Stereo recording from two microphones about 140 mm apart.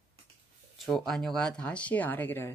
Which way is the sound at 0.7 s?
Centre (ahead or behind).